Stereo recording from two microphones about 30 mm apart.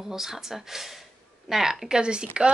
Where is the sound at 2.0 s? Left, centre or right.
Right.